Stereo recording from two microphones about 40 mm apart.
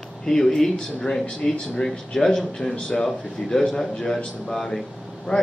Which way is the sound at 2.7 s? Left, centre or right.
Left.